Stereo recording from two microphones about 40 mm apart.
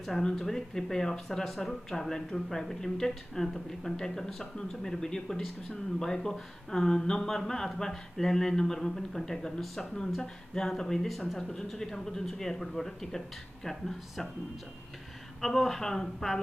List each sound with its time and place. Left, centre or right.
0.2 s speech: centre
10.2 s speech: centre
15.4 s speech: centre